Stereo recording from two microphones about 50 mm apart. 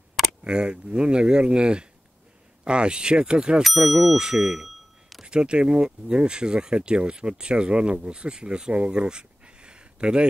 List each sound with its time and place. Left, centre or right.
0.4 s speech: centre
3.6 s speech: centre